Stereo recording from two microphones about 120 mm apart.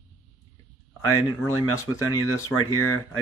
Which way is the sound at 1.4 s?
25° left (ahead or behind).